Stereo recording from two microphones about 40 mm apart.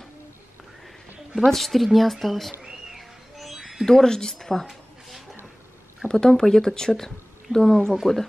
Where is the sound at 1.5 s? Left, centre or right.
Centre.